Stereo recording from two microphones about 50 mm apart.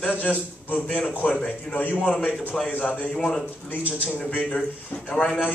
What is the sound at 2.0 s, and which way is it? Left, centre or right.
A man's voice, left.